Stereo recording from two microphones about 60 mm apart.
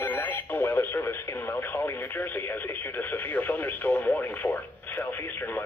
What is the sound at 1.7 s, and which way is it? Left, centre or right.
Speech, left.